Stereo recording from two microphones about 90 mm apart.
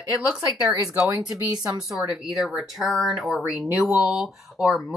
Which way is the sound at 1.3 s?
40° right (ahead or behind).